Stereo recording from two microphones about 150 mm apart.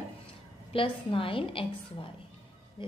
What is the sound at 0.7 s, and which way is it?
A woman's voice, 35° left (ahead or behind).